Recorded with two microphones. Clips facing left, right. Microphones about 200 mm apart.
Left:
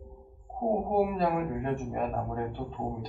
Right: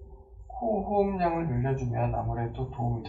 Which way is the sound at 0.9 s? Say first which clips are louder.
Right 2 dB; centre (ahead or behind).